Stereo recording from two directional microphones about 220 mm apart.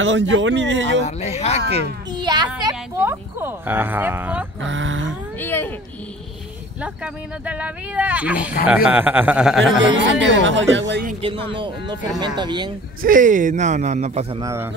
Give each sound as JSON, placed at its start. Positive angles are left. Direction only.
{"t": 0.0, "sound": "speech", "side_deg": -60}
{"t": 1.0, "sound": "speech", "side_deg": 30}
{"t": 2.0, "sound": "a child's voice", "side_deg": -20}
{"t": 4.6, "sound": "speech", "side_deg": -55}
{"t": 5.4, "sound": "speech", "side_deg": 10}
{"t": 6.8, "sound": "a man's voice", "side_deg": -5}
{"t": 10.0, "sound": "a man's voice", "side_deg": -55}
{"t": 11.1, "sound": "a child's voice", "side_deg": -25}
{"t": 13.0, "sound": "a man's voice", "side_deg": -35}
{"t": 14.4, "sound": "speech", "side_deg": -10}